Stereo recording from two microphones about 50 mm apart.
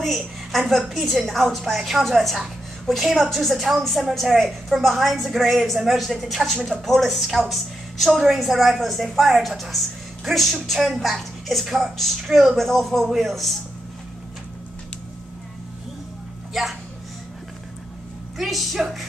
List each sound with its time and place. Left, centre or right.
0.0 s a woman's voice: centre
18.4 s a woman's voice: centre